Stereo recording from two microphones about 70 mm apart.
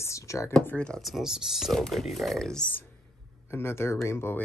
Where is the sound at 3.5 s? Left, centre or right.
Left.